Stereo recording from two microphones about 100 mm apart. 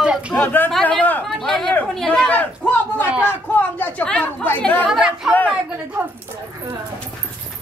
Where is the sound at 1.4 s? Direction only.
5° left (ahead or behind).